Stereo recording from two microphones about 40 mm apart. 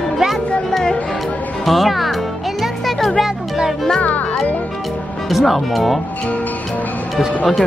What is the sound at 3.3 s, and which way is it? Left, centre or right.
Music, centre.